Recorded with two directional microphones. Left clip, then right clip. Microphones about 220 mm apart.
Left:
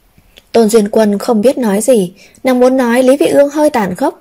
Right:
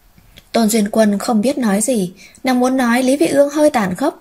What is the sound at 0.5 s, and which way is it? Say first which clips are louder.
A woman's voice: left 8 dB; 25° left (ahead or behind).